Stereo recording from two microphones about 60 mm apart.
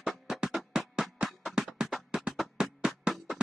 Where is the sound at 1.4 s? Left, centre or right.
Centre.